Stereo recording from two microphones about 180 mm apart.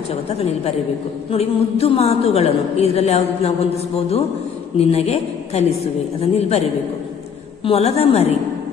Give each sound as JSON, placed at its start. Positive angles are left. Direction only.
{"t": 0.1, "sound": "a woman's voice", "side_deg": 35}